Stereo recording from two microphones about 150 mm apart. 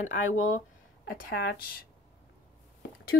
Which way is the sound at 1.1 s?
80° left.